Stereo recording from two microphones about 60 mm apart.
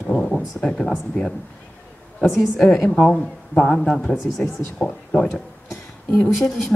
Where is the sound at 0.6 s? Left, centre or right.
Centre.